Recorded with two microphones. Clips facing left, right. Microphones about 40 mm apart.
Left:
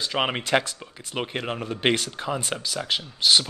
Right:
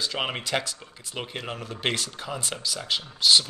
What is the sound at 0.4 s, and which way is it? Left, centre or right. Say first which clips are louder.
Speech: left 5 dB; left.